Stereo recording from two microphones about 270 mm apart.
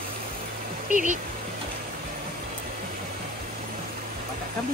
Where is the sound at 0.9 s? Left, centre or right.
Left.